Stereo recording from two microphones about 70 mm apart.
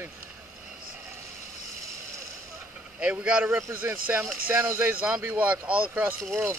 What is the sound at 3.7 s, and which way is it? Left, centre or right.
Speech, right.